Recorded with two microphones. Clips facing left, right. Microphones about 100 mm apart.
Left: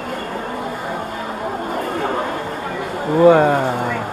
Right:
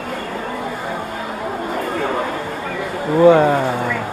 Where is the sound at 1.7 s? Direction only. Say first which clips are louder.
Right 1 dB; 40° left (ahead or behind).